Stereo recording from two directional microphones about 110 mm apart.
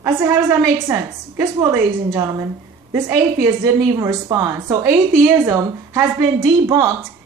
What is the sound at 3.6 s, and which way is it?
A woman's voice, 30° right (ahead or behind).